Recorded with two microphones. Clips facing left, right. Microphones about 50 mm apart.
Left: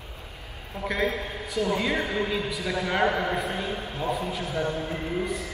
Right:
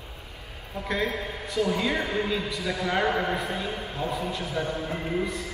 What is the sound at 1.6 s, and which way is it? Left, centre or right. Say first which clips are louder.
A man's voice: left 2 dB; left.